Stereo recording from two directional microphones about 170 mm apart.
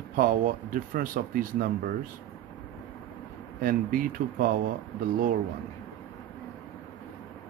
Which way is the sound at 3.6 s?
55° right (ahead or behind).